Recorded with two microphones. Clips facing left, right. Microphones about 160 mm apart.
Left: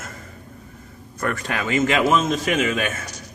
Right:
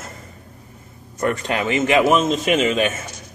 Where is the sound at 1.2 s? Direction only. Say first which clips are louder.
Right 4 dB; 20° right (ahead or behind).